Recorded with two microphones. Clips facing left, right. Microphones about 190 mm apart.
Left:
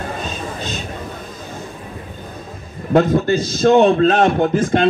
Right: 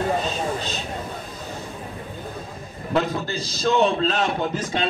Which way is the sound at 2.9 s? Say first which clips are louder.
Left 9 dB; 50° left (ahead or behind).